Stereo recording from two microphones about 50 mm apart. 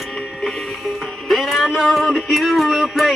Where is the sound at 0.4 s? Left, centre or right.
Centre.